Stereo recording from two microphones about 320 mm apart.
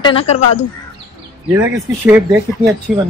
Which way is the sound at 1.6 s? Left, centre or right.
Centre.